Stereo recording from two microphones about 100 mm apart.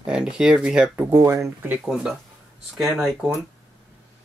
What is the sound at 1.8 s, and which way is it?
Speech, 5° right (ahead or behind).